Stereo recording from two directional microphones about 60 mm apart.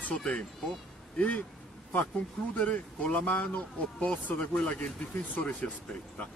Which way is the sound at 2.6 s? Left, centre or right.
Left.